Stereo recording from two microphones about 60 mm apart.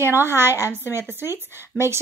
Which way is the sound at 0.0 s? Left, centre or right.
Right.